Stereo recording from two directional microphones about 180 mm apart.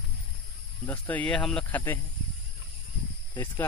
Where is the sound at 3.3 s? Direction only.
15° left (ahead or behind).